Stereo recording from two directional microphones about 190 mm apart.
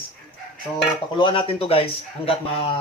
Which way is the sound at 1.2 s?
25° left (ahead or behind).